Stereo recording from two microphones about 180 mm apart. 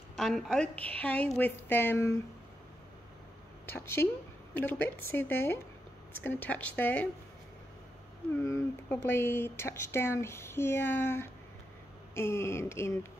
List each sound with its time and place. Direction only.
0.1 s speech: centre (ahead or behind)
3.6 s speech: 15° left (ahead or behind)
8.4 s speech: 15° left (ahead or behind)